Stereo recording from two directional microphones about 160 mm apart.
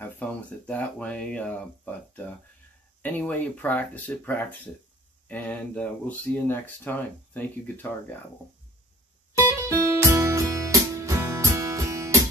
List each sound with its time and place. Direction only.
0.0 s speech: 10° left (ahead or behind)
3.0 s speech: 10° left (ahead or behind)
9.7 s music: 20° right (ahead or behind)